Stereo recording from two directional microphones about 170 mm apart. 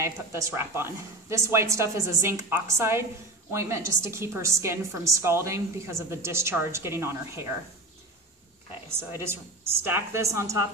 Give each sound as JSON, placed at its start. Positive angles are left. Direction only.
{"t": 0.0, "sound": "a woman's voice", "side_deg": -15}
{"t": 8.8, "sound": "a woman's voice", "side_deg": -15}